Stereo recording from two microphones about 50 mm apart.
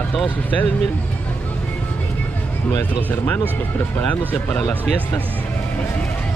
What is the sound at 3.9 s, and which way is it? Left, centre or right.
Speech, left.